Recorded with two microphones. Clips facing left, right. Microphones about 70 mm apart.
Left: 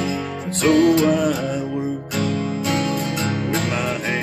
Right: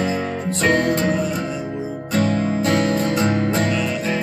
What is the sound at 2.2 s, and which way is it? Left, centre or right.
Music, right.